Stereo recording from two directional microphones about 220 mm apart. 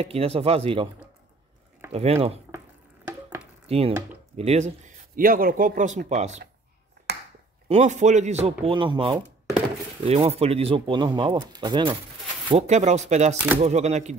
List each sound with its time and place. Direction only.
0.0 s speech: 25° right (ahead or behind)
1.9 s speech: 25° right (ahead or behind)
3.1 s chopping: 10° right (ahead or behind)
3.6 s speech: 25° right (ahead or behind)
7.1 s chopping: 50° right (ahead or behind)
7.6 s speech: 30° right (ahead or behind)